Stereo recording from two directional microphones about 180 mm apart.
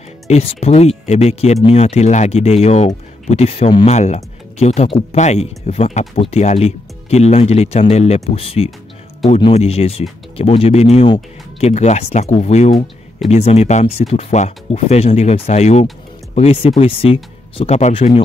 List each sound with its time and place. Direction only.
0.3 s speech: 35° left (ahead or behind)
12.7 s speech: centre (ahead or behind)
13.3 s speech: 35° left (ahead or behind)